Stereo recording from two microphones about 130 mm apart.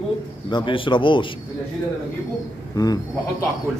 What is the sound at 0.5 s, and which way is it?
Speech, 40° left (ahead or behind).